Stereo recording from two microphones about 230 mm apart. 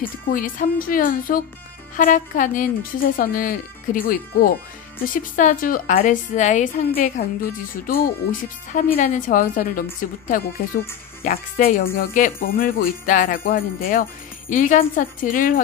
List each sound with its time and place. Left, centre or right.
0.3 s speech: left